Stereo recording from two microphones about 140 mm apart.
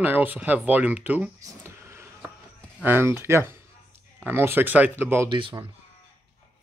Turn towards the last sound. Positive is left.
turn(degrees=-30)  # may be behind; listen again after turning